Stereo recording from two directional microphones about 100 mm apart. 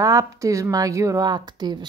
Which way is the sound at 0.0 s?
35° right (ahead or behind).